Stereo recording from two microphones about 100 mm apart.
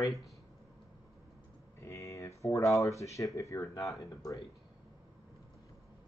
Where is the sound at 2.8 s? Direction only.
30° left (ahead or behind).